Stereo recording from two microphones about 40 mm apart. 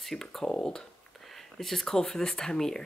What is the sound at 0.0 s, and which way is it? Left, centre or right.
Speech, centre.